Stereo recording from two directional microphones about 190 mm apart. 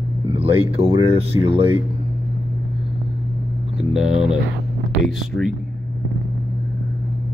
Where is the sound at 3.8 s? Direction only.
Centre (ahead or behind).